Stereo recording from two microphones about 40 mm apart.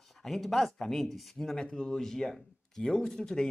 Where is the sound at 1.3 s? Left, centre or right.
Centre.